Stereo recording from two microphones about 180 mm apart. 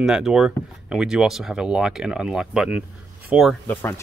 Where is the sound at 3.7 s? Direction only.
10° left (ahead or behind).